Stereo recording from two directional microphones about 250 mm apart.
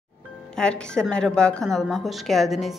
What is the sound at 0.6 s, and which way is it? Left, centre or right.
A woman's voice, centre.